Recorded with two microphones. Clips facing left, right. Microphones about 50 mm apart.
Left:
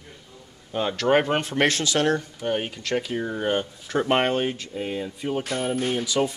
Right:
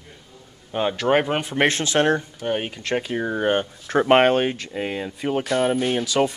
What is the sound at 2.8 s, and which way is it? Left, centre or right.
Speech, right.